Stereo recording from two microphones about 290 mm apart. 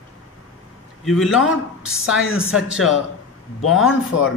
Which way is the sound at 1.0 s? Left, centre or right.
Centre.